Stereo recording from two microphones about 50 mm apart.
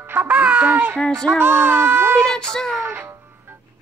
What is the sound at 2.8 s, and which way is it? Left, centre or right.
Music, right.